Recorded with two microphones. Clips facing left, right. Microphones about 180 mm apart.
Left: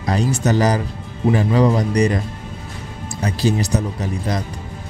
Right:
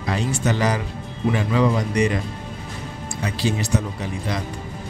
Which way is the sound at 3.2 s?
40° left (ahead or behind).